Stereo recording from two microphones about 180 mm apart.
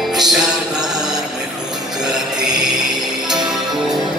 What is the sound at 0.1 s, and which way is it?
Music, centre (ahead or behind).